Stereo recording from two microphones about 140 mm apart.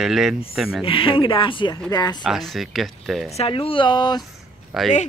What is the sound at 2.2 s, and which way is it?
Speech, centre (ahead or behind).